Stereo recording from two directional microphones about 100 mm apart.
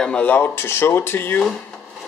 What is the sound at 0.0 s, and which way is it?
Speech, 10° left (ahead or behind).